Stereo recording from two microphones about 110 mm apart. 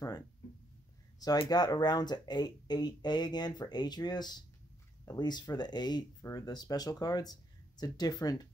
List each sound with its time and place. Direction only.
1.5 s speech: 40° left (ahead or behind)